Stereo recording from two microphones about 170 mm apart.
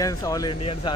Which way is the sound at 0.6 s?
35° left (ahead or behind).